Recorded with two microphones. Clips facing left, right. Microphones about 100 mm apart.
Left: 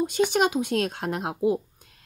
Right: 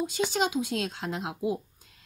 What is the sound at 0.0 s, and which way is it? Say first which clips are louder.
Speech: left 5 dB; 60° left (ahead or behind).